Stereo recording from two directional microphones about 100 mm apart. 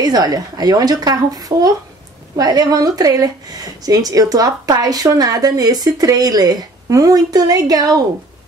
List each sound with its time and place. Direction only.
0.0 s speech: 40° right (ahead or behind)